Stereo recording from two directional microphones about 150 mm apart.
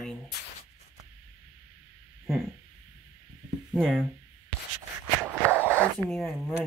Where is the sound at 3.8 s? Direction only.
Centre (ahead or behind).